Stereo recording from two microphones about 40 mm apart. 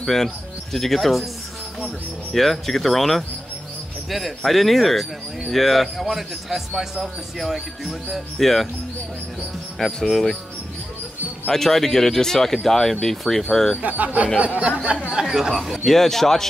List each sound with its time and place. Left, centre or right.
0.0 s a man's voice: centre
2.3 s speech: centre
4.5 s a man's voice: centre
8.4 s speech: centre
10.0 s a man's voice: centre
11.5 s speech: centre
13.8 s speech: right; by 15.8 s centre
15.8 s speech: centre